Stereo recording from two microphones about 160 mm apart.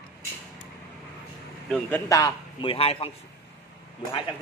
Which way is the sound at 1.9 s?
20° left (ahead or behind).